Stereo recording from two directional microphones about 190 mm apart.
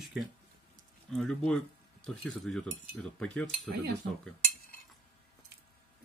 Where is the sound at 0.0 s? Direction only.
Centre (ahead or behind).